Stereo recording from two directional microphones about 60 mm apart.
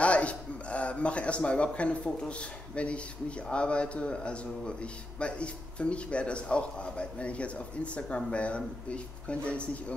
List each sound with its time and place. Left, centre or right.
0.0 s speech: left